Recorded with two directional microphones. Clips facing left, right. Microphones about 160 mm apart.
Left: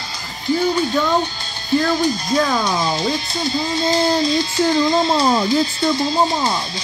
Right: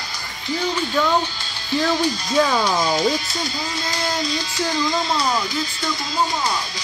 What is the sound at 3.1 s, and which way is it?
Speech, 30° left (ahead or behind).